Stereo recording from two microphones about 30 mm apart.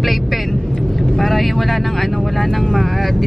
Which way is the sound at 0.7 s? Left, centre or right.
Centre.